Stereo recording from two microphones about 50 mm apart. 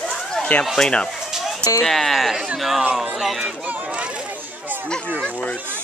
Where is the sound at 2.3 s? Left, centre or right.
Centre.